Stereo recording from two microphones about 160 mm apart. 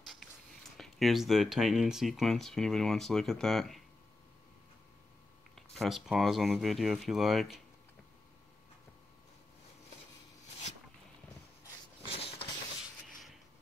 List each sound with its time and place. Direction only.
0.7 s speech: centre (ahead or behind)
5.8 s speech: centre (ahead or behind)
12.1 s a sound: 35° left (ahead or behind)